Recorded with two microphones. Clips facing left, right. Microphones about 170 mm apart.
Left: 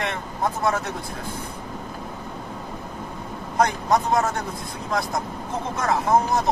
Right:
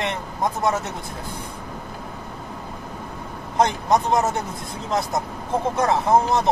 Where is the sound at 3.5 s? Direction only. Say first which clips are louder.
Right 1 dB; 20° right (ahead or behind).